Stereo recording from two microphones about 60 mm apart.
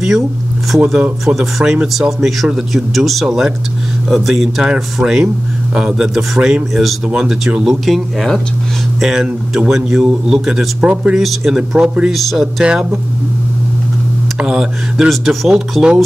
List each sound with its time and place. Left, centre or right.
0.7 s a man's voice: centre
10.8 s speech: centre
11.1 s speech: centre
11.7 s a man's voice: centre
12.1 s speech: centre
14.4 s a man's voice: centre